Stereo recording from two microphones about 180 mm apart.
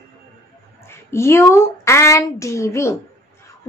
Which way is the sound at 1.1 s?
15° left (ahead or behind).